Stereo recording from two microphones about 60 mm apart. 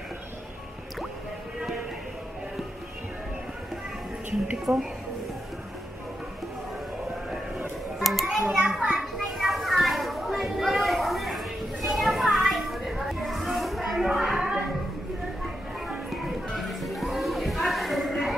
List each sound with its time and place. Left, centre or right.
4.7 s a woman's voice: right
7.2 s children playing: centre
16.1 s music: centre